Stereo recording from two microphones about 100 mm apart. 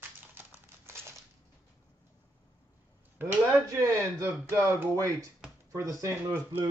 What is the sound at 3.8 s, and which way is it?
Speech, 25° right (ahead or behind).